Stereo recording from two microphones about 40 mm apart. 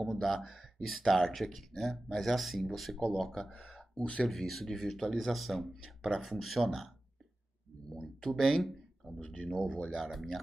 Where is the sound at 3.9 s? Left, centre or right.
Left.